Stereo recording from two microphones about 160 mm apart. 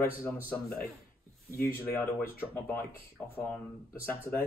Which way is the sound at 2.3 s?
15° left (ahead or behind).